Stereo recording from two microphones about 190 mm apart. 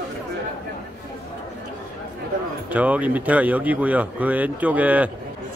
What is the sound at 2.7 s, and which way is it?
Speech, 10° right (ahead or behind).